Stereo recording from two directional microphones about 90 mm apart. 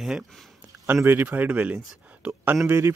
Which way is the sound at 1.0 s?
20° right (ahead or behind).